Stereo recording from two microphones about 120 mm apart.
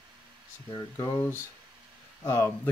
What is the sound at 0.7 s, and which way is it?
Speech, 35° left (ahead or behind).